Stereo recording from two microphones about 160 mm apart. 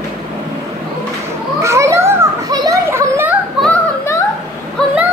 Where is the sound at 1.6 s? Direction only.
20° right (ahead or behind).